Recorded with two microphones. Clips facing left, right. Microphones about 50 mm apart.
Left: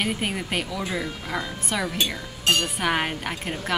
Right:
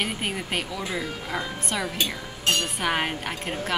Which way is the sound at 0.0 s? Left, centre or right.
Centre.